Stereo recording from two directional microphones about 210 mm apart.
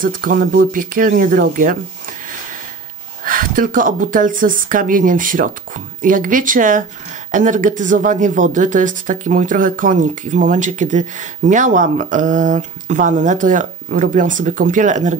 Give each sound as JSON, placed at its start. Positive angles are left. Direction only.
{"t": 0.0, "sound": "speech", "side_deg": -40}
{"t": 3.3, "sound": "speech", "side_deg": -40}